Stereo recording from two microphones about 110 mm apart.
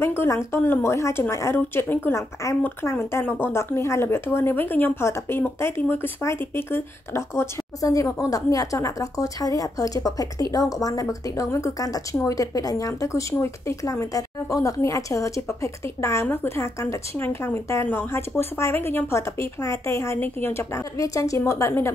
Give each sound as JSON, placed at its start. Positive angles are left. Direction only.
{"t": 0.0, "sound": "a woman's voice", "side_deg": 20}